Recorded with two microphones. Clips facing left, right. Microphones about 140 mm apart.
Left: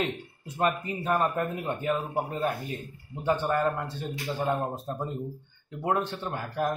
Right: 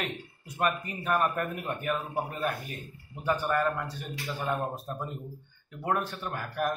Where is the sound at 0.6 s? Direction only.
25° left (ahead or behind).